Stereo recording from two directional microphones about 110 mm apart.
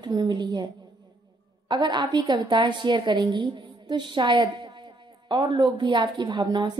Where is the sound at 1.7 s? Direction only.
40° right (ahead or behind).